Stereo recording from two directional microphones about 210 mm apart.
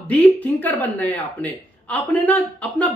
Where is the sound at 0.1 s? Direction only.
10° left (ahead or behind).